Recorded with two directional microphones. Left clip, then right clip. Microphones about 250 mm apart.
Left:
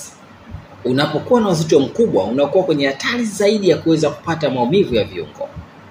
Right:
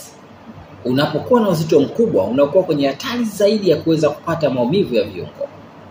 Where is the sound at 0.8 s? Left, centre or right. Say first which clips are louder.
Even; centre.